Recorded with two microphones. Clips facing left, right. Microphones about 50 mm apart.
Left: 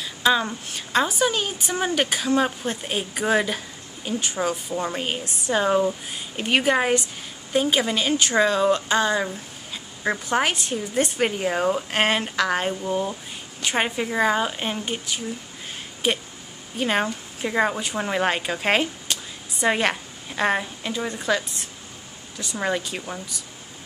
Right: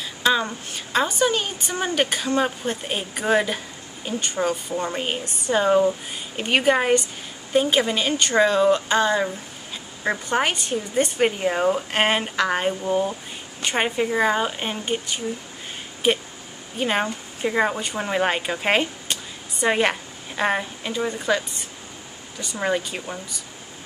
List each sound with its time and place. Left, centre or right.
0.0 s a woman's voice: centre
16.0 s a sound: centre
16.7 s a woman's voice: centre